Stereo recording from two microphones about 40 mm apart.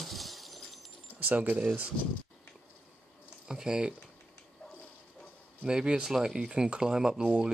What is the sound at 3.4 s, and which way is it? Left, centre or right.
Speech, centre.